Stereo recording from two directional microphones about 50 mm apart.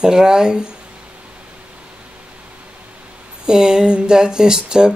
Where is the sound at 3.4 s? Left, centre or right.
Centre.